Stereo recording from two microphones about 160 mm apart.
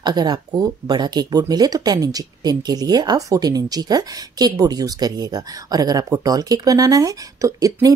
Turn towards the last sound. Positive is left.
turn(degrees=-20)  # may be behind; listen again after turning